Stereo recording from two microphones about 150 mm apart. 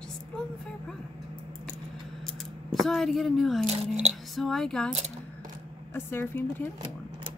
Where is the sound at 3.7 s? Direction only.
45° right (ahead or behind).